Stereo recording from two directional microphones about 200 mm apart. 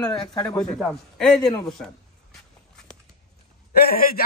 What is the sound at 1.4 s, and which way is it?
Speech, 20° left (ahead or behind).